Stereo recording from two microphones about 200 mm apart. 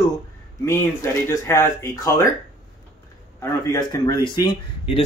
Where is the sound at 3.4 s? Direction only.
15° left (ahead or behind).